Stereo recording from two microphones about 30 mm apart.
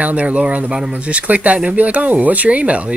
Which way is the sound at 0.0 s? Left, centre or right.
Right.